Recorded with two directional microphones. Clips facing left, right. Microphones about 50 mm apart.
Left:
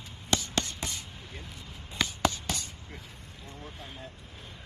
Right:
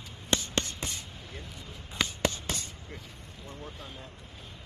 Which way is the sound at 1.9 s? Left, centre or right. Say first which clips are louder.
Left 1 dB; right.